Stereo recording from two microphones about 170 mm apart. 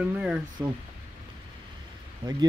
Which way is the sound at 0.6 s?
20° right (ahead or behind).